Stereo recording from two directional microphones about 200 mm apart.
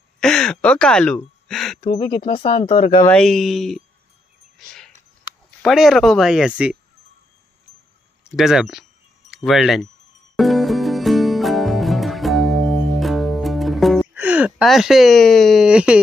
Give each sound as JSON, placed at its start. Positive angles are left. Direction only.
{"t": 0.2, "sound": "speech", "side_deg": 5}
{"t": 2.0, "sound": "speech", "side_deg": 25}
{"t": 3.0, "sound": "speech", "side_deg": 5}
{"t": 4.6, "sound": "a sound", "side_deg": 5}
{"t": 5.6, "sound": "speech", "side_deg": 0}
{"t": 8.3, "sound": "speech", "side_deg": 0}
{"t": 9.3, "sound": "wind chime", "side_deg": 0}
{"t": 10.3, "sound": "music", "side_deg": 0}